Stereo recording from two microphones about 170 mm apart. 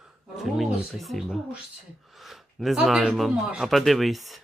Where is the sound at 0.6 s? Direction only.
Centre (ahead or behind).